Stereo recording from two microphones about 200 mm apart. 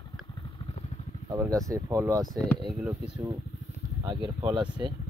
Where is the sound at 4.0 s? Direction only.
20° right (ahead or behind).